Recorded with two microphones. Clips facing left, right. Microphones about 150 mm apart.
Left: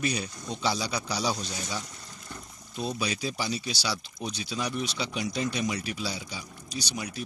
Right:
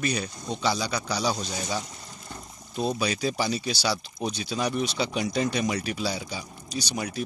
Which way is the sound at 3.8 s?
45° right (ahead or behind).